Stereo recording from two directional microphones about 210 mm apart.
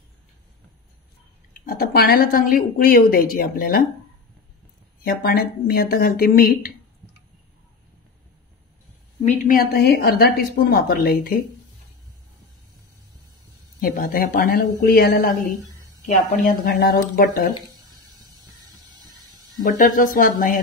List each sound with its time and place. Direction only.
1.7 s a woman's voice: 45° left (ahead or behind)
5.0 s a woman's voice: 45° left (ahead or behind)
9.2 s a woman's voice: 40° left (ahead or behind)
13.7 s a woman's voice: 45° left (ahead or behind)
16.1 s speech: 40° left (ahead or behind)
19.8 s speech: 40° left (ahead or behind)